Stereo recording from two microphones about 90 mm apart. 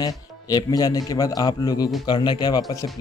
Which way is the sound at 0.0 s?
45° left (ahead or behind).